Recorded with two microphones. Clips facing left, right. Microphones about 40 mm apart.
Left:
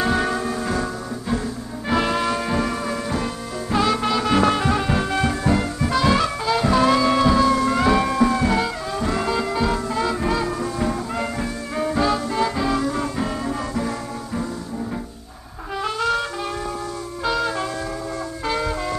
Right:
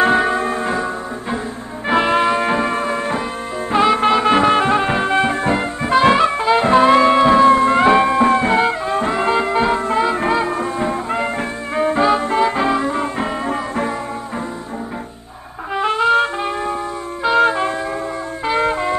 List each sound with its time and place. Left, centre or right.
0.4 s music: right
1.9 s music: right
15.7 s music: right
17.4 s wind instrument: right
18.6 s music: right